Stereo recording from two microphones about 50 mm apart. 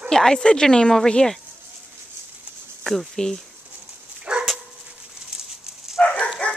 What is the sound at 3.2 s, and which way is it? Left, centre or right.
Speech, centre.